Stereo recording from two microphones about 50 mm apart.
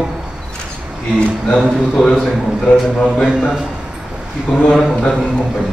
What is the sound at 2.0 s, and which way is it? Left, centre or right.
A man's voice, centre.